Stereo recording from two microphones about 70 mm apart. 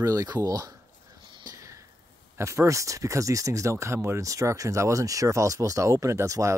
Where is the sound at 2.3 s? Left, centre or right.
Right.